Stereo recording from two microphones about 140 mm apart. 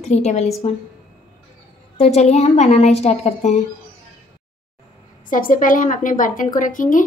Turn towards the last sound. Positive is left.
turn(degrees=70)  # may be behind; listen again after turning